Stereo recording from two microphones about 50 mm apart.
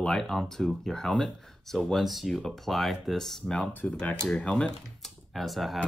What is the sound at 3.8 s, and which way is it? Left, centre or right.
Speech, left.